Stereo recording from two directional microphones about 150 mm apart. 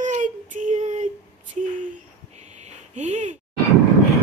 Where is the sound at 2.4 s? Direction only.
50° right (ahead or behind).